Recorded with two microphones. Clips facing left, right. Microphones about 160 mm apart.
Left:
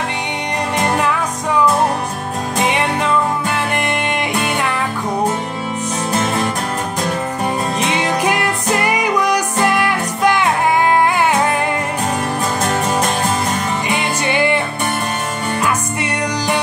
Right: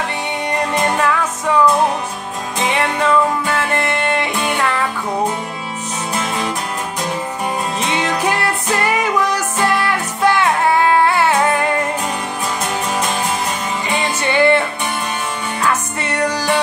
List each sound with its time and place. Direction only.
3.5 s music: 15° left (ahead or behind)
7.9 s music: 15° left (ahead or behind)
13.8 s music: 15° left (ahead or behind)
15.6 s music: 15° left (ahead or behind)